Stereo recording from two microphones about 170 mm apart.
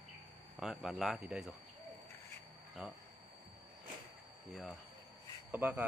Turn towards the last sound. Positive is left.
turn(degrees=-10)  # may be behind; listen again after turning